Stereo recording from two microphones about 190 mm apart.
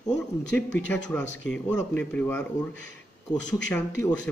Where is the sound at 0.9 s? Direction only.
10° left (ahead or behind).